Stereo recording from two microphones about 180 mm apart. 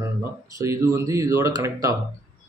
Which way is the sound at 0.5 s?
15° right (ahead or behind).